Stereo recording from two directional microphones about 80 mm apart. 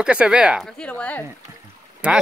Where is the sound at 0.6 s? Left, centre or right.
Centre.